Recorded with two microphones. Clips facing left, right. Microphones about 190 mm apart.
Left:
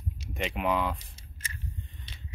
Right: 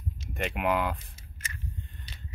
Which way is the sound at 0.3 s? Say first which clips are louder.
Right 1 dB; centre (ahead or behind).